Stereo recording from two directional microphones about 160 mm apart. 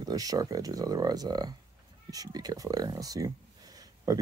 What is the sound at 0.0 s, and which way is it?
Speech, 20° right (ahead or behind).